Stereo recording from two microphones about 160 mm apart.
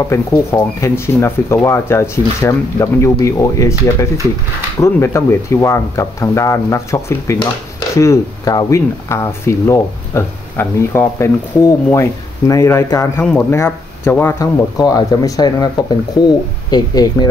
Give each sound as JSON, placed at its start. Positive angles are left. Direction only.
{"t": 0.1, "sound": "speech", "side_deg": 20}
{"t": 13.2, "sound": "speech", "side_deg": 5}
{"t": 16.7, "sound": "speech", "side_deg": 25}